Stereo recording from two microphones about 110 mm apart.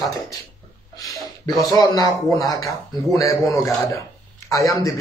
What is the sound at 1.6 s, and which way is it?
A man's voice, 35° left (ahead or behind).